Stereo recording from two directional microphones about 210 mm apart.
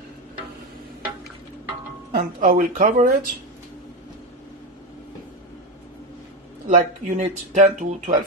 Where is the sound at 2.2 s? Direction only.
40° right (ahead or behind).